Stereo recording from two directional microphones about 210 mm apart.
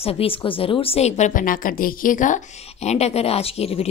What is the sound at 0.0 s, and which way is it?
Speech, 25° left (ahead or behind).